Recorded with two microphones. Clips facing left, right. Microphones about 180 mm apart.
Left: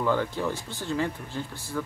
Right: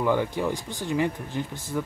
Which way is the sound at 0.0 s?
15° right (ahead or behind).